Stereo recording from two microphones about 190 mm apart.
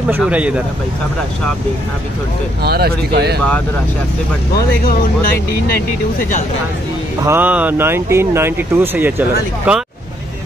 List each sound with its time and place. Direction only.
0.1 s speech: 5° right (ahead or behind)
2.6 s speech: 55° right (ahead or behind)
7.2 s speech: 10° right (ahead or behind)